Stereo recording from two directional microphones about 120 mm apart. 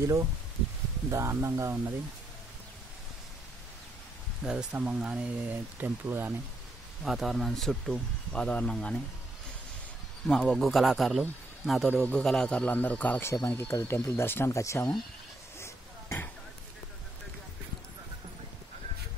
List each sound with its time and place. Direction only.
1.1 s speech: 25° right (ahead or behind)
4.4 s speech: 5° right (ahead or behind)
7.1 s speech: centre (ahead or behind)
10.2 s speech: 5° left (ahead or behind)
11.9 s a man's voice: 10° left (ahead or behind)
15.6 s a sound: 20° left (ahead or behind)